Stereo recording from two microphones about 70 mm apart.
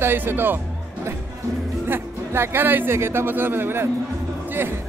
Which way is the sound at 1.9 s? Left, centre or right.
Right.